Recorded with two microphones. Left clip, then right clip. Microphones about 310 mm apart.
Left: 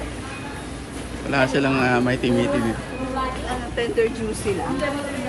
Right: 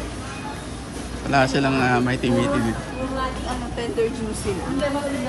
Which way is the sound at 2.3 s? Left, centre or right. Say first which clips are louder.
Right 2 dB; right.